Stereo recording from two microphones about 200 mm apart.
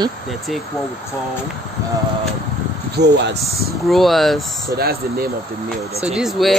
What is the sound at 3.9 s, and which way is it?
Speech, centre (ahead or behind).